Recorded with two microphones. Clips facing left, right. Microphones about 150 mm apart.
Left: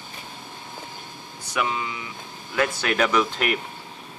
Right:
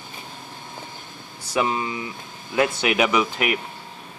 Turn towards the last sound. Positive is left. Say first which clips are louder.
# right 1 dB
turn(degrees=-5)  # may be behind; listen again after turning